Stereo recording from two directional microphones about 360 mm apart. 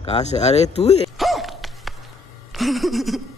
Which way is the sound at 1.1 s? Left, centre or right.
Centre.